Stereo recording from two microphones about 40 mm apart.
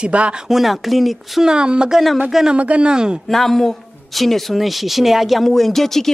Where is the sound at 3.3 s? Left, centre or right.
Centre.